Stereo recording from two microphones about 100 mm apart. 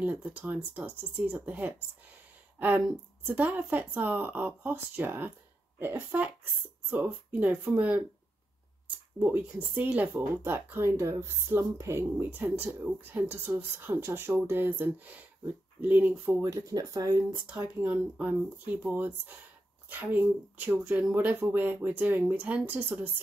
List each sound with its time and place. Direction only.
0.0 s speech: 15° right (ahead or behind)
16.4 s speech: 35° right (ahead or behind)
17.3 s speech: 15° right (ahead or behind)